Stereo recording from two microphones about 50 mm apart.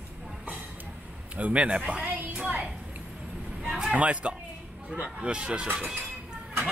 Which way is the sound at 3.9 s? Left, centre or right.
Right.